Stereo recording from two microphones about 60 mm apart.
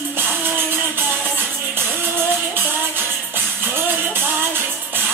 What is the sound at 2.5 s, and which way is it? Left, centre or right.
Music, right.